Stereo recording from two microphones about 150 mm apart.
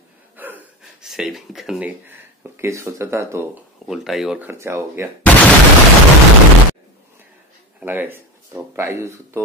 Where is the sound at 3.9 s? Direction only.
Centre (ahead or behind).